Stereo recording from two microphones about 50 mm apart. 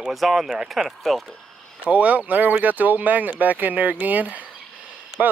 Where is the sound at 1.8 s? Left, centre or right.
Right.